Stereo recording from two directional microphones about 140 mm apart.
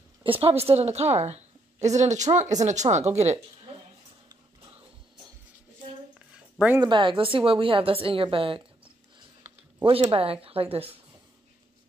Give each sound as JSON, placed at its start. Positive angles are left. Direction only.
{"t": 0.2, "sound": "a woman's voice", "side_deg": -40}
{"t": 6.1, "sound": "a sound", "side_deg": -10}
{"t": 6.8, "sound": "a woman's voice", "side_deg": -35}
{"t": 10.1, "sound": "a woman's voice", "side_deg": -40}